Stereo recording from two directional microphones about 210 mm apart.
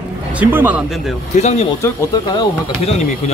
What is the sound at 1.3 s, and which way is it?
Speech, 30° left (ahead or behind).